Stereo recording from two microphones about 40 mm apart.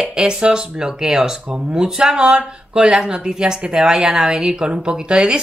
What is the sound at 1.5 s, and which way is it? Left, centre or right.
A woman's voice, right.